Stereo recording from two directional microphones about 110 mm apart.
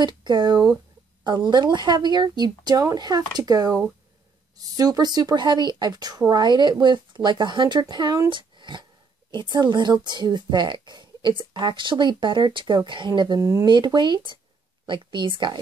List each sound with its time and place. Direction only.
0.0 s speech: 40° right (ahead or behind)
13.7 s speech: 45° right (ahead or behind)